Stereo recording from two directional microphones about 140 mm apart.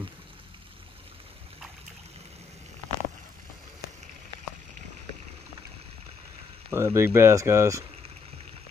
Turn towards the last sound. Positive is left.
turn(degrees=-20)  # may be behind; listen again after turning